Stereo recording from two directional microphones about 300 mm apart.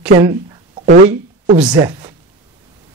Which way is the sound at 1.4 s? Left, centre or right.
Centre.